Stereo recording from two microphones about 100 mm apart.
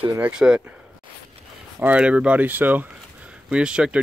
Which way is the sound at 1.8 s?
15° right (ahead or behind).